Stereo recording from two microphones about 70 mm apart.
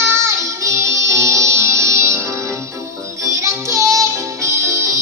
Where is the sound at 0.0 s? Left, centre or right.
Right.